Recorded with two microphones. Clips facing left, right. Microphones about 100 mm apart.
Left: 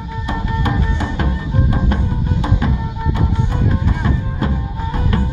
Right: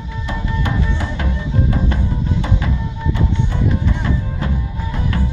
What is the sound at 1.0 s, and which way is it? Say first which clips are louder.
Music: left 2 dB; 25° left (ahead or behind).